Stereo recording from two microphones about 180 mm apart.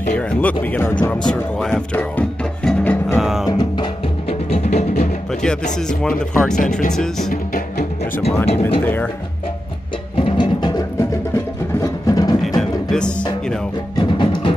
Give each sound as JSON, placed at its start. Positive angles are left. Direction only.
{"t": 0.1, "sound": "speech", "side_deg": 10}
{"t": 1.3, "sound": "music", "side_deg": 5}
{"t": 3.4, "sound": "music", "side_deg": 25}
{"t": 5.3, "sound": "speech", "side_deg": 5}
{"t": 8.5, "sound": "speech", "side_deg": 30}
{"t": 8.8, "sound": "speech", "side_deg": 10}
{"t": 10.1, "sound": "music", "side_deg": 30}
{"t": 12.5, "sound": "music", "side_deg": 5}
{"t": 13.9, "sound": "music", "side_deg": 25}